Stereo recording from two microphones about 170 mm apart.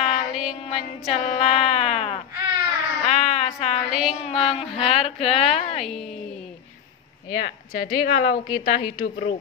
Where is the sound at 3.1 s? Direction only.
40° left (ahead or behind).